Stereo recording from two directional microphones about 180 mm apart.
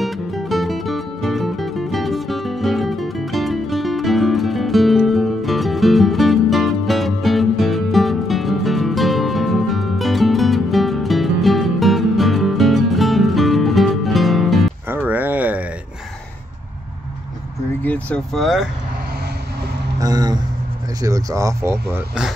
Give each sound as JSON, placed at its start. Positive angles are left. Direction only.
{"t": 0.0, "sound": "music", "side_deg": 0}
{"t": 14.9, "sound": "a sound", "side_deg": -10}
{"t": 17.8, "sound": "speech", "side_deg": 10}
{"t": 20.0, "sound": "speech", "side_deg": -20}